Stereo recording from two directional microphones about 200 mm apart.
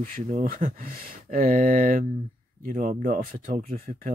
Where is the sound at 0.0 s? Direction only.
40° right (ahead or behind).